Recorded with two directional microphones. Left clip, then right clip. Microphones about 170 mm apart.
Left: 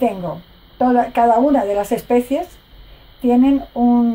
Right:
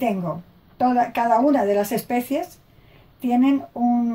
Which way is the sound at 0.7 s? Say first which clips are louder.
Left 5 dB; 25° left (ahead or behind).